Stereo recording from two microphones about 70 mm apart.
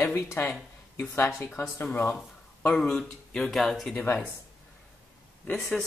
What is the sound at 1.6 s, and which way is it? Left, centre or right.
Speech, left.